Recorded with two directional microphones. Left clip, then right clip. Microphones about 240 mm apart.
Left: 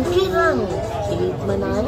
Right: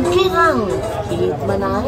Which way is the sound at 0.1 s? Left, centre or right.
Right.